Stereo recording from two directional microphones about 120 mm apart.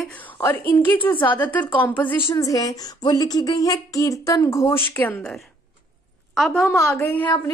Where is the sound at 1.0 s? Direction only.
45° left (ahead or behind).